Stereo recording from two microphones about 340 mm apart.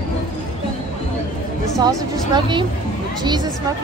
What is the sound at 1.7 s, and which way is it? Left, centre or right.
Speech, centre.